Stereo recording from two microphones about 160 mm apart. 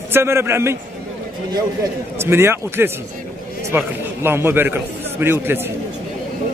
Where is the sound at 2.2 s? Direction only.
15° right (ahead or behind).